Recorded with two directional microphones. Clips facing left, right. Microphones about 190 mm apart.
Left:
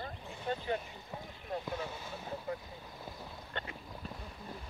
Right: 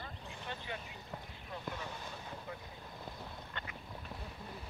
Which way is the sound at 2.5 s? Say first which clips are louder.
Left 9 dB; 40° left (ahead or behind).